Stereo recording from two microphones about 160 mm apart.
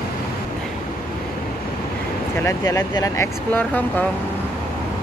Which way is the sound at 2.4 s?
20° left (ahead or behind).